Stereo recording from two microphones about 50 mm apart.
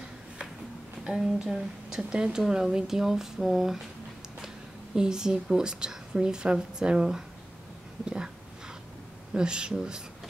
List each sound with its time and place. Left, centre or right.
1.1 s a woman's voice: centre
4.9 s a woman's voice: centre
8.0 s a sound: centre
9.3 s a woman's voice: centre